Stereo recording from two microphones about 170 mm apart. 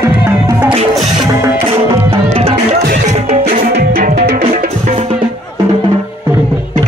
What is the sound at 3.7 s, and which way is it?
Music, 45° right (ahead or behind).